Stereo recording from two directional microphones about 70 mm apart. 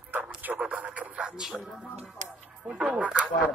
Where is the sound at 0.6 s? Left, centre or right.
Centre.